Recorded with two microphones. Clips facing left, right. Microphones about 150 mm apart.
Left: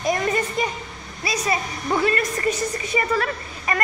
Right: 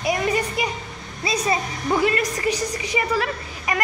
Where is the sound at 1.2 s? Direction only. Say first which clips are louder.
Right 2 dB; 25° right (ahead or behind).